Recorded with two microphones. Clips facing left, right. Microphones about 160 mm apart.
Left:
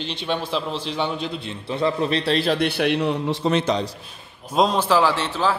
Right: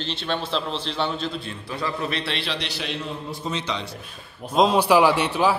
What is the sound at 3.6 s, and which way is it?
Speech, 40° left (ahead or behind).